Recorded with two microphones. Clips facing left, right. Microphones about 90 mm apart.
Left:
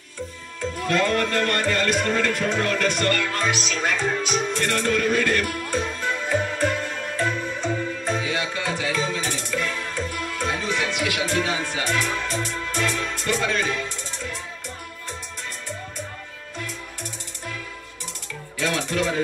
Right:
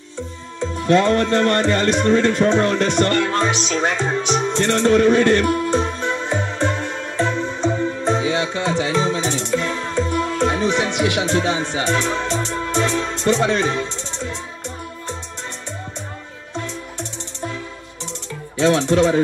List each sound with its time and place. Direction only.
0.6 s music: 25° right (ahead or behind)
18.6 s music: 30° right (ahead or behind)